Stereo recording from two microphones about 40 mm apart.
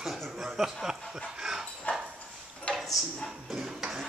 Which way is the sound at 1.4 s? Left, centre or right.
Centre.